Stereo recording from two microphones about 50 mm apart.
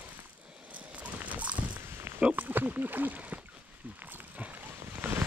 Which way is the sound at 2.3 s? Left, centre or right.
Right.